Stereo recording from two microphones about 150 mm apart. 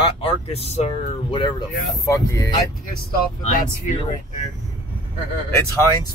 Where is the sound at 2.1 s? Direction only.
20° left (ahead or behind).